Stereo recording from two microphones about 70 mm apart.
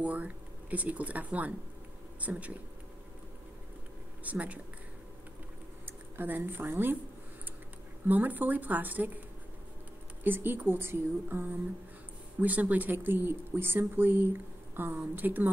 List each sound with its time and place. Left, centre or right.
0.0 s speech: right
4.2 s speech: right
5.9 s speech: right
8.1 s speech: right
10.2 s speech: right
12.4 s speech: right